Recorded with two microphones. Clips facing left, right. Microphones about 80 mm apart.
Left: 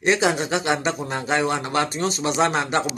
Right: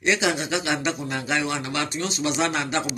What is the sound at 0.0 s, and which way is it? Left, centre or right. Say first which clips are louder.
A man's voice: left 3 dB; left.